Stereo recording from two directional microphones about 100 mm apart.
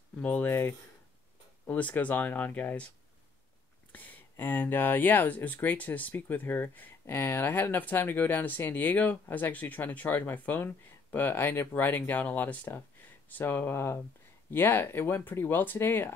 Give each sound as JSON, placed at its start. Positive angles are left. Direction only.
{"t": 0.2, "sound": "speech", "side_deg": 20}
{"t": 3.9, "sound": "speech", "side_deg": 15}